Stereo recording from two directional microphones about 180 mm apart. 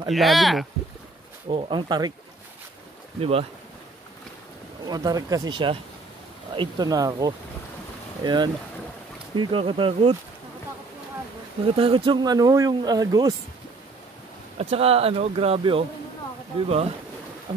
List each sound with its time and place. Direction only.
0.1 s speech: centre (ahead or behind)
1.5 s speech: 25° right (ahead or behind)
3.2 s speech: 35° right (ahead or behind)
4.8 s speech: 20° right (ahead or behind)
11.6 s speech: 30° right (ahead or behind)
14.6 s speech: 35° right (ahead or behind)